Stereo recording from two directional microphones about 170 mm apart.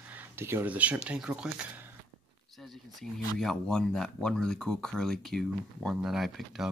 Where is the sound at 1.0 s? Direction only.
5° right (ahead or behind).